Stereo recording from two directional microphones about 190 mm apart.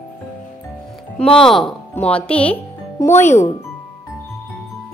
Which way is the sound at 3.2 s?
40° left (ahead or behind).